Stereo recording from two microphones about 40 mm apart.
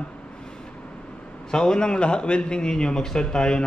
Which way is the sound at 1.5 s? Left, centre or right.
Centre.